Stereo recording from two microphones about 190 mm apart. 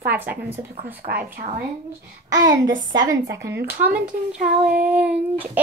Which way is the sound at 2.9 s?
20° right (ahead or behind).